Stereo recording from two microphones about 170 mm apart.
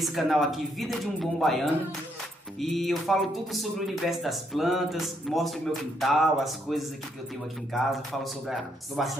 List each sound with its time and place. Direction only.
0.0 s speech: centre (ahead or behind)
2.6 s speech: centre (ahead or behind)